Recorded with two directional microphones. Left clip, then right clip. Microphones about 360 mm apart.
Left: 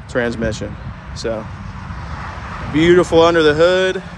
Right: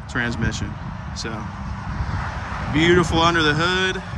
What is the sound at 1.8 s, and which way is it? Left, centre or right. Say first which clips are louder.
Vehicle: even; right.